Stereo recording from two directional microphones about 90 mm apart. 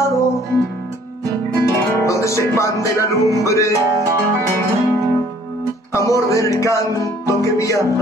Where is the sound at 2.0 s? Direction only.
35° left (ahead or behind).